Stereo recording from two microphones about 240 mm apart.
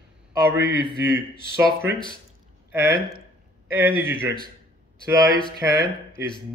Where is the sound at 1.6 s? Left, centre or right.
Centre.